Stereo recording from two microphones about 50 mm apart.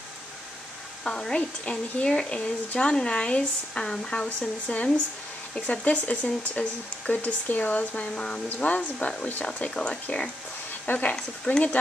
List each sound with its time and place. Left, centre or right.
1.0 s speech: centre
8.1 s speech: centre
10.9 s speech: left